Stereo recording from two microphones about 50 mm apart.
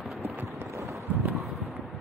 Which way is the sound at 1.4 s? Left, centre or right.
Centre.